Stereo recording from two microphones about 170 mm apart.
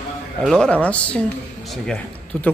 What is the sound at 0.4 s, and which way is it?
Speech, 5° left (ahead or behind).